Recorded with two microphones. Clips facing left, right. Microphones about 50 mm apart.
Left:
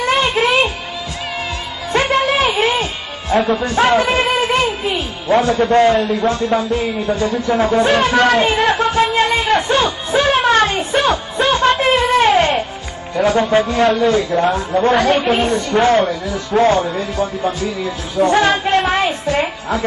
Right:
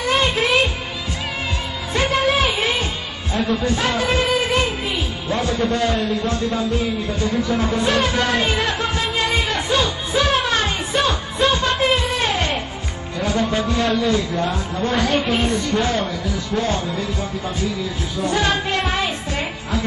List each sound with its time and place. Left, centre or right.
0.0 s music: left
2.6 s music: left
3.6 s speech: left
9.2 s music: left
13.1 s speech: left
18.4 s music: left